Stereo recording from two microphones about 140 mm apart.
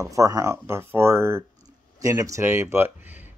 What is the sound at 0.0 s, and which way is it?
Speech, 25° right (ahead or behind).